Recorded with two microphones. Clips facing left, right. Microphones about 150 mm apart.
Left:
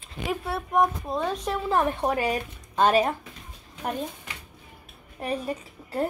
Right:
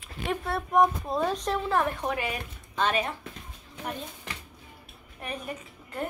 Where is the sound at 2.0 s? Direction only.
40° left (ahead or behind).